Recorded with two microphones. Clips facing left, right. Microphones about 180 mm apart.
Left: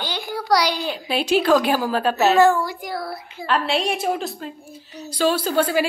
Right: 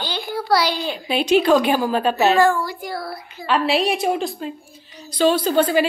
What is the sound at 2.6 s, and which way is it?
Speech, 20° left (ahead or behind).